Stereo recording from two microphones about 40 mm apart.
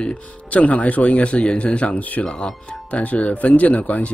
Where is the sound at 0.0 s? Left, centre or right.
Left.